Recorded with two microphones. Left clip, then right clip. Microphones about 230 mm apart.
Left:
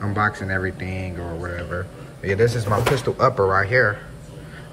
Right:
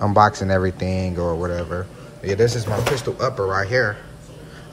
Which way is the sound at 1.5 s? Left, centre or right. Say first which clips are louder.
Right 2 dB; centre.